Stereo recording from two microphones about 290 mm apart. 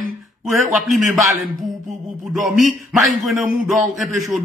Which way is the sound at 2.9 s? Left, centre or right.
Centre.